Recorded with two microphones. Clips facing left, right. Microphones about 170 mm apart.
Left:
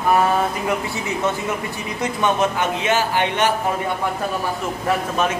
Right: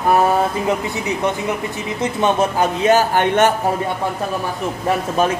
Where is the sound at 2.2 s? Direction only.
35° right (ahead or behind).